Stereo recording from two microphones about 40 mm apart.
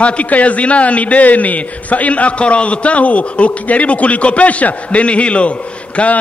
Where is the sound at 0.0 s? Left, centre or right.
Left.